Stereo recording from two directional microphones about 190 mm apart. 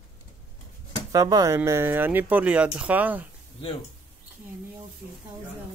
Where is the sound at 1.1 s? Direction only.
20° right (ahead or behind).